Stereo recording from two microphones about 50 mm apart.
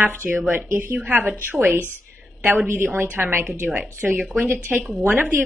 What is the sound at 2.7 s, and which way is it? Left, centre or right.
A woman's voice, right.